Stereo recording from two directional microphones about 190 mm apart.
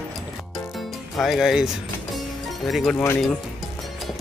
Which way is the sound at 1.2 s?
Centre (ahead or behind).